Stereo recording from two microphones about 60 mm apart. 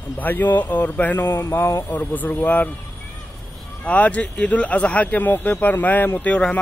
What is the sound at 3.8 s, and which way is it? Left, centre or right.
Speech, left.